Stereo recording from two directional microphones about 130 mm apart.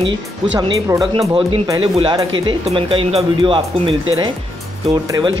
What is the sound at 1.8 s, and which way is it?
Speech, 40° right (ahead or behind).